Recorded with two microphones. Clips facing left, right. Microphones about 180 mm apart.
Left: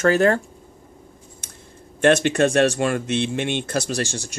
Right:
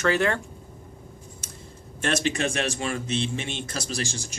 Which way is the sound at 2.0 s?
60° left (ahead or behind).